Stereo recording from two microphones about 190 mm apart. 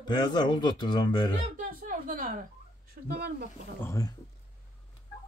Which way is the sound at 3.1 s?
55° right (ahead or behind).